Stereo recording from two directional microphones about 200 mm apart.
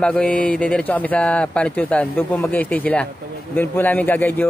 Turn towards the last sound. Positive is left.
turn(degrees=10)  # may be behind; listen again after turning